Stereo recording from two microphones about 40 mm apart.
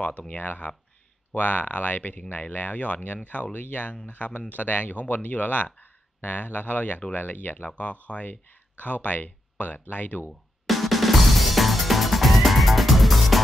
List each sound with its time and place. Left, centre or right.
0.3 s speech: left
10.7 s music: centre